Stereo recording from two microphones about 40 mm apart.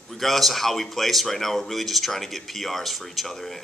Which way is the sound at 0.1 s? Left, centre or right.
Centre.